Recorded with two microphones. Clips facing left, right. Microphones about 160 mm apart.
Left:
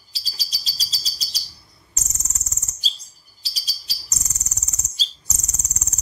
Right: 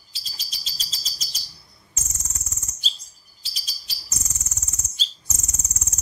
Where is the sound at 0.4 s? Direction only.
35° left (ahead or behind).